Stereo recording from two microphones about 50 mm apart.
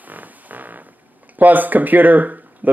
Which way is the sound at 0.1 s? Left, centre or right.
Right.